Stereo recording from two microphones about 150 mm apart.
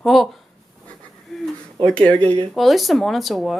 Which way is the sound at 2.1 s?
35° right (ahead or behind).